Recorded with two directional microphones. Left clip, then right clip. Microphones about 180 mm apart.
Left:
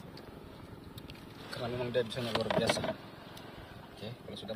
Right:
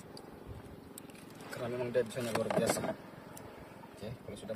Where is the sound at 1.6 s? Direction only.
Centre (ahead or behind).